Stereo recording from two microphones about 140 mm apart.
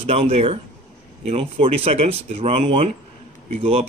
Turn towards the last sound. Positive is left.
turn(degrees=-45)  # may be behind; listen again after turning